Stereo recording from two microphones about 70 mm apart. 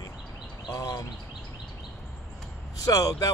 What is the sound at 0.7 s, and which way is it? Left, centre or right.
Speech, left.